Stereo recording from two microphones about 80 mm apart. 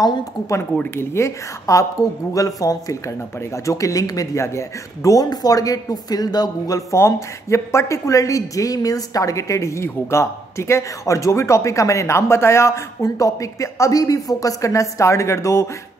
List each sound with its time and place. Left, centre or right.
0.9 s a woman's voice: left
6.9 s a woman's voice: left